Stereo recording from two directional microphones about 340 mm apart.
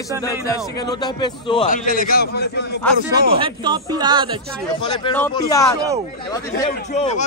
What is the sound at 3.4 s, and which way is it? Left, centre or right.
Speech, centre.